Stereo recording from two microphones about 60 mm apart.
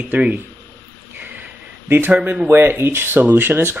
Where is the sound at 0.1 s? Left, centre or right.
Right.